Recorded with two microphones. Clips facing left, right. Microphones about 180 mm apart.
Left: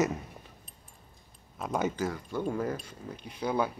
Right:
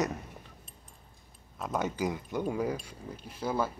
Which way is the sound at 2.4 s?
5° right (ahead or behind).